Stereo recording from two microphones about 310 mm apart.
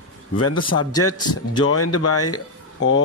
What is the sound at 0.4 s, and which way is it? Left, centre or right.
Speech, left.